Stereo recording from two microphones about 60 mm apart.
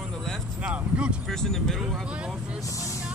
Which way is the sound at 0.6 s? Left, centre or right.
Centre.